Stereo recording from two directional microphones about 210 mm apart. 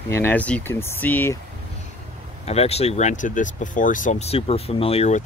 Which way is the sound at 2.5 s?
30° left (ahead or behind).